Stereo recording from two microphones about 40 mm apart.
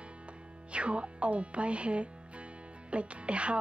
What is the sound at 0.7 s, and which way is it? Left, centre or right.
Speech, right.